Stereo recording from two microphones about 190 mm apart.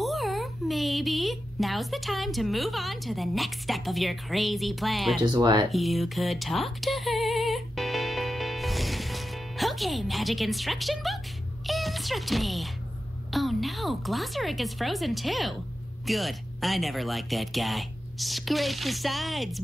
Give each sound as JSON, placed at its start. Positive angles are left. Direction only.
{"t": 0.0, "sound": "a woman's voice", "side_deg": 0}
{"t": 5.2, "sound": "speech", "side_deg": -25}
{"t": 5.7, "sound": "a sound", "side_deg": 0}
{"t": 11.6, "sound": "music", "side_deg": 0}
{"t": 13.3, "sound": "speech", "side_deg": 0}